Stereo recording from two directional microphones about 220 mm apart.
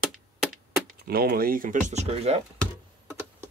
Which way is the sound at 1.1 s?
40° right (ahead or behind).